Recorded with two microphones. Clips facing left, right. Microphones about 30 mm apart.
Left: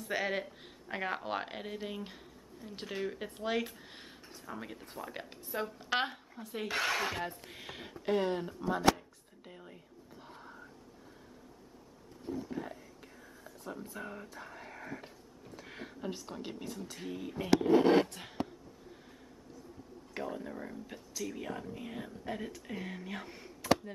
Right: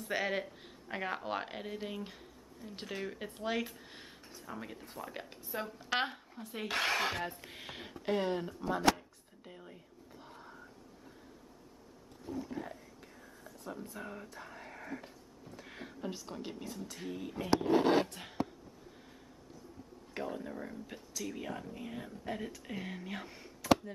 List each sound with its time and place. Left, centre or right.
0.0 s speech: centre
6.7 s speech: right
7.5 s speech: centre
9.5 s a sound: centre
12.4 s a sound: centre
13.4 s whispering: centre
15.5 s speech: centre
20.2 s a sound: centre
21.2 s speech: centre